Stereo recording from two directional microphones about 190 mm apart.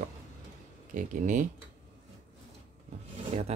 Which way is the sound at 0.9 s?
40° right (ahead or behind).